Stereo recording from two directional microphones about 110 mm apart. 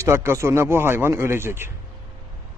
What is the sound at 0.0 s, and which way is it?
A man's voice, 25° right (ahead or behind).